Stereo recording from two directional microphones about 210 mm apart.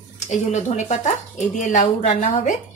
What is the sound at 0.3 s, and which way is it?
A woman's voice, 35° left (ahead or behind).